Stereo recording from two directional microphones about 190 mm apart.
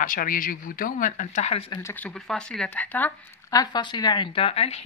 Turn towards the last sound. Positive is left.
turn(degrees=30)  # may be behind; listen again after turning